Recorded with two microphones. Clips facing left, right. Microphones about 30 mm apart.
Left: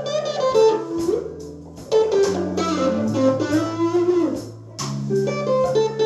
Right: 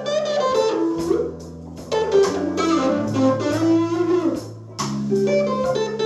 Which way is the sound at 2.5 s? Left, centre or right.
Centre.